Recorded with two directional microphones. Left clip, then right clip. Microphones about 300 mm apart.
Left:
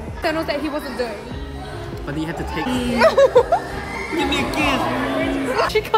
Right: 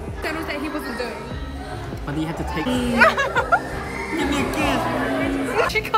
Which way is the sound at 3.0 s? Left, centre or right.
Centre.